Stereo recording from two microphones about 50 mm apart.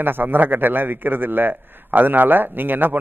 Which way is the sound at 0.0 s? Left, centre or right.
Right.